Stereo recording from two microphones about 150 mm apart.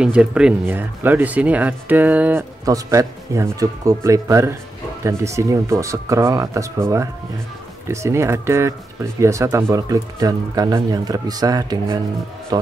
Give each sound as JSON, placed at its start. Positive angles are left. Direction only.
{"t": 0.0, "sound": "speech", "side_deg": -5}
{"t": 2.6, "sound": "speech", "side_deg": -20}